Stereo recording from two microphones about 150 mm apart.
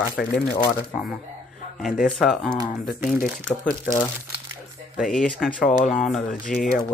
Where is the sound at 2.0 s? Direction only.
Centre (ahead or behind).